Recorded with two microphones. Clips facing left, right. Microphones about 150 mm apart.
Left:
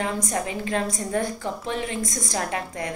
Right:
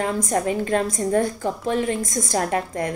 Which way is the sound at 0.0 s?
45° right (ahead or behind).